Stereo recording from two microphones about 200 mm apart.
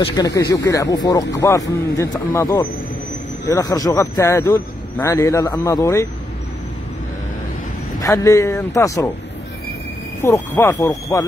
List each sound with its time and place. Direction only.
0.0 s speech: 20° left (ahead or behind)
8.0 s speech: 15° left (ahead or behind)
10.2 s speech: 10° left (ahead or behind)